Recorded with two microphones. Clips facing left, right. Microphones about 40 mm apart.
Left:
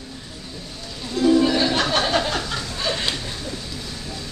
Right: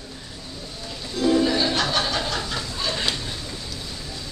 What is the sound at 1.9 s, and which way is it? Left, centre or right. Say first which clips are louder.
Chuckle: left 4 dB; left.